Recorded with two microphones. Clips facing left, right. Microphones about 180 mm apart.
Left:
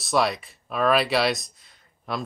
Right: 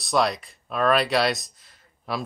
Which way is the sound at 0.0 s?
Centre (ahead or behind).